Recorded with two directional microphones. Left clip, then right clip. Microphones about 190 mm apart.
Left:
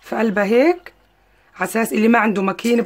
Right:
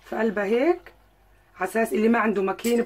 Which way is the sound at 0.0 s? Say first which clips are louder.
Left 6 dB; 55° left (ahead or behind).